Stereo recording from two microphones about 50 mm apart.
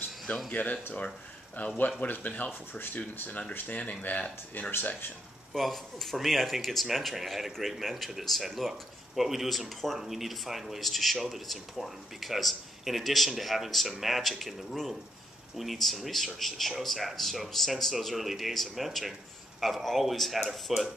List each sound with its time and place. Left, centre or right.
0.5 s speech: left
4.6 s speech: left
5.5 s speech: centre